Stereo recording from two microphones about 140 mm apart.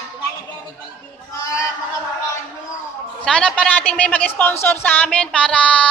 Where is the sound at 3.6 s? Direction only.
10° left (ahead or behind).